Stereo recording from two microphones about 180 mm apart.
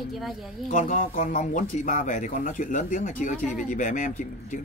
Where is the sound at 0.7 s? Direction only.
50° left (ahead or behind).